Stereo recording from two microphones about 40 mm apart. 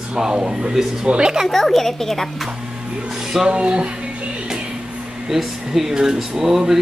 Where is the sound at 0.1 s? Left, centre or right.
Right.